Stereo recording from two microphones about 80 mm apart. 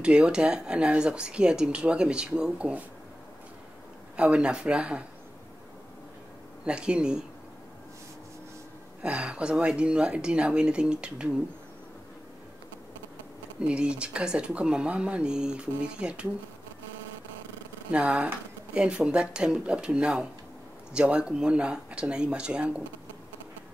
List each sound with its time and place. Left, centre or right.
0.0 s speech: centre
4.2 s speech: centre
6.6 s speech: centre
9.0 s speech: centre
13.6 s speech: centre
17.9 s speech: centre